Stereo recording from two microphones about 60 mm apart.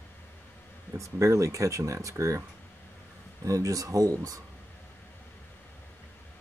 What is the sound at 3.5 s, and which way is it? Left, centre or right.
Speech, right.